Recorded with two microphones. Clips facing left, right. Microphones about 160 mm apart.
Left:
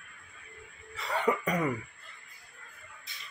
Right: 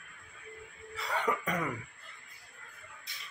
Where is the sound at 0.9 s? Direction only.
Centre (ahead or behind).